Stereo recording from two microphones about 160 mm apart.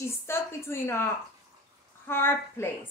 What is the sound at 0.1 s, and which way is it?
Speech, 15° left (ahead or behind).